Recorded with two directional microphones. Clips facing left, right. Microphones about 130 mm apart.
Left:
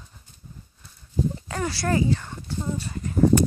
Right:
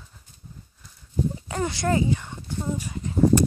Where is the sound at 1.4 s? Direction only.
20° right (ahead or behind).